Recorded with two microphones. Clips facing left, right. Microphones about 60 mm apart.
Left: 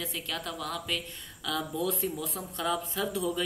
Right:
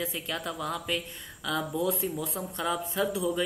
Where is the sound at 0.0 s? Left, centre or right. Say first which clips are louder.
Right 3 dB; centre.